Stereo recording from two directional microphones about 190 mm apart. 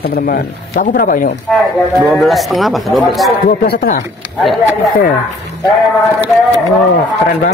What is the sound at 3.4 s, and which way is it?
Speech, 50° left (ahead or behind).